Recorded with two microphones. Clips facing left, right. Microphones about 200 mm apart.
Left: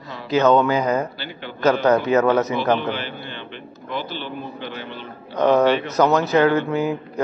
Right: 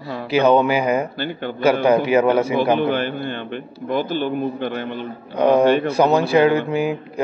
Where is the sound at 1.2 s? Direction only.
50° right (ahead or behind).